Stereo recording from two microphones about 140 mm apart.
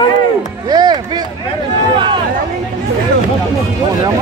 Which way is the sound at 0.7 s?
30° right (ahead or behind).